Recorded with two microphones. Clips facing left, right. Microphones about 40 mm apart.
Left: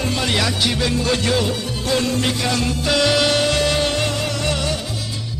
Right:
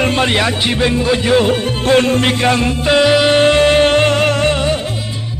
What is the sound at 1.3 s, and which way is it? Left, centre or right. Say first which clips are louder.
Music: right 8 dB; right.